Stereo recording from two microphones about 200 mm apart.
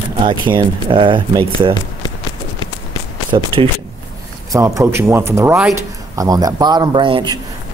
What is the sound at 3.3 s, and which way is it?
Speech, 25° right (ahead or behind).